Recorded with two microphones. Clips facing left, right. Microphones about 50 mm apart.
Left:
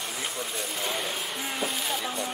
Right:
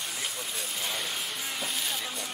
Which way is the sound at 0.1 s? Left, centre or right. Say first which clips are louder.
Left 3 dB; left.